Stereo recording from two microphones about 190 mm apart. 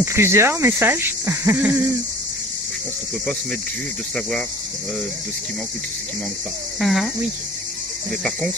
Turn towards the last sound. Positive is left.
turn(degrees=0)  # may be behind; listen again after turning